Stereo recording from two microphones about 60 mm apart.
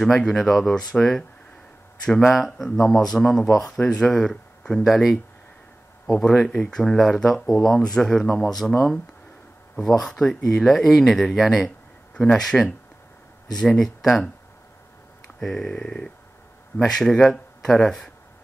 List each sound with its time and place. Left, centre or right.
0.0 s speech: centre
4.8 s speech: centre
9.8 s speech: centre
15.2 s speech: centre